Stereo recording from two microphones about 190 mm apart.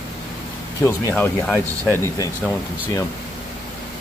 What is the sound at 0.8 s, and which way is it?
Speech, 15° left (ahead or behind).